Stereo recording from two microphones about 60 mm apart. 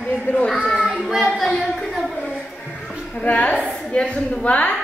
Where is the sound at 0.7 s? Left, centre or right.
Centre.